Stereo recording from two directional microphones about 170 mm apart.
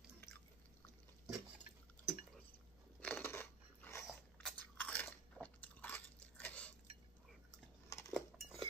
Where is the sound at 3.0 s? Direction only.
10° left (ahead or behind).